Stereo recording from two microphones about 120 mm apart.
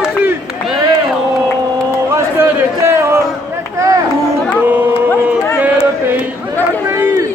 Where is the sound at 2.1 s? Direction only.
20° right (ahead or behind).